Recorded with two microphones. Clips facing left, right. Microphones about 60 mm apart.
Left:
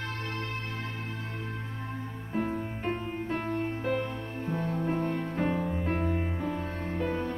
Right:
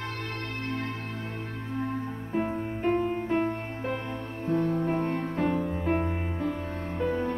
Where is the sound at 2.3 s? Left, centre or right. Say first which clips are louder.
Right 2 dB; centre.